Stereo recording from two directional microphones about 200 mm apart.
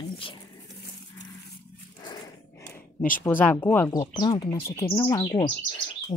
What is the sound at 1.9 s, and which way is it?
Dog, 20° left (ahead or behind).